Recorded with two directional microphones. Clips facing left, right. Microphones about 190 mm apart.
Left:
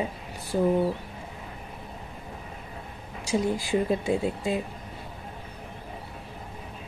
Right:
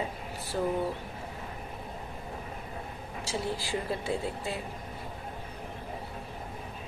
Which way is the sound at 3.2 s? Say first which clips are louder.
Left 8 dB; 15° left (ahead or behind).